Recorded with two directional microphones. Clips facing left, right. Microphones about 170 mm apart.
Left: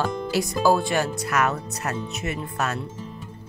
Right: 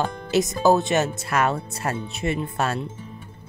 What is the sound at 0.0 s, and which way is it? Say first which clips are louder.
Speech: right 2 dB; 20° right (ahead or behind).